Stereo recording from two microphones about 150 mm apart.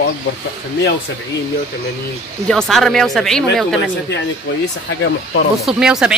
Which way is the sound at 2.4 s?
Centre (ahead or behind).